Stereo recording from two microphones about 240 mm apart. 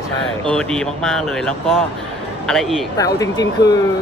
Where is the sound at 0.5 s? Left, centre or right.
Centre.